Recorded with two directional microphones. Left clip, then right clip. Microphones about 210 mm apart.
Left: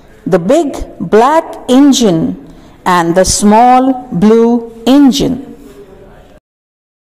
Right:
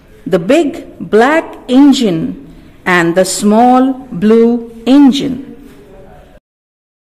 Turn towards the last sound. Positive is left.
turn(degrees=10)  # may be behind; listen again after turning